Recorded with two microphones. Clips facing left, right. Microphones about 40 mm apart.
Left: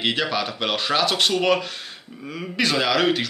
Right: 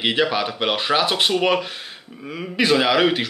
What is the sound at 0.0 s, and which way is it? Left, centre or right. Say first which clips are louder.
Speech: right 3 dB; centre.